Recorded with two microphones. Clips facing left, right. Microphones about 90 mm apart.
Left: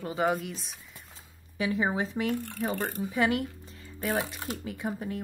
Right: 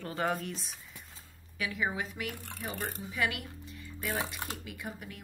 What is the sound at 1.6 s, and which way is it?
Speech, 30° left (ahead or behind).